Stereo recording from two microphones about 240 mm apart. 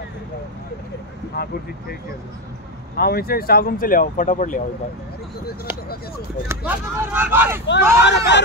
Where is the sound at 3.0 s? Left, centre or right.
Left.